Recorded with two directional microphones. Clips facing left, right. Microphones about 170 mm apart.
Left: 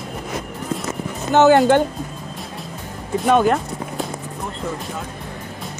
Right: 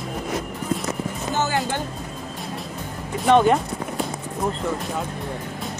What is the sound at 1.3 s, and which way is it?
Speech, 65° left (ahead or behind).